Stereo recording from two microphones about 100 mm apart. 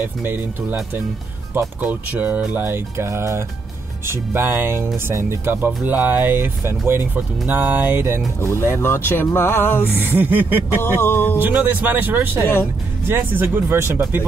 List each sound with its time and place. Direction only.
0.0 s speech: 20° right (ahead or behind)
8.4 s speech: 25° left (ahead or behind)
9.9 s speech: 20° right (ahead or behind)
10.8 s speech: 25° left (ahead or behind)
11.3 s speech: 20° right (ahead or behind)